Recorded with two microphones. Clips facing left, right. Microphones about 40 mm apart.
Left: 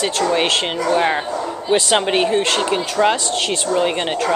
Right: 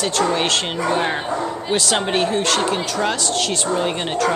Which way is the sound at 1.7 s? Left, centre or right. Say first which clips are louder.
Left 4 dB; centre.